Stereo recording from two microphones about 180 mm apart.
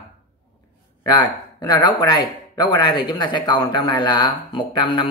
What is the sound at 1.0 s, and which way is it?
Speech, 25° left (ahead or behind).